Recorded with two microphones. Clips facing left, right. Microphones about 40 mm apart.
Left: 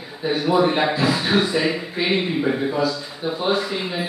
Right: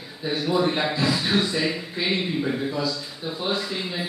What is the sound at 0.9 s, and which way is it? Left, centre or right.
Speech, left.